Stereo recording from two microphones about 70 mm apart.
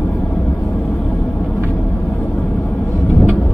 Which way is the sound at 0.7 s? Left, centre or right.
Left.